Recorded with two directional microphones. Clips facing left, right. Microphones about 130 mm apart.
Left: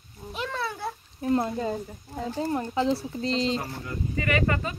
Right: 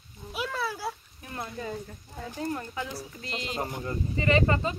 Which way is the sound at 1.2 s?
25° left (ahead or behind).